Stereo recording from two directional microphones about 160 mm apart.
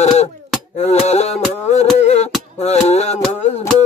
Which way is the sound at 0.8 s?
45° left (ahead or behind).